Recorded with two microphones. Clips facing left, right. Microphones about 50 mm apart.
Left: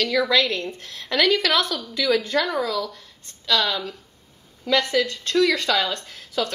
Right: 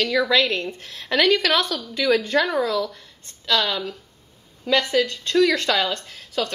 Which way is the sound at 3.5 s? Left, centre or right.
Right.